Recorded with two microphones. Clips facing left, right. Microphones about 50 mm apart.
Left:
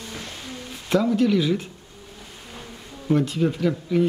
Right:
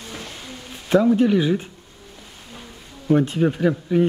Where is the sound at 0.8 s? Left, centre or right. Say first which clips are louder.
Right 4 dB; right.